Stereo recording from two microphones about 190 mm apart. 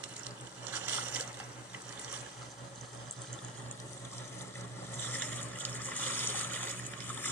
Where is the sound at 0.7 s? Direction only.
10° right (ahead or behind).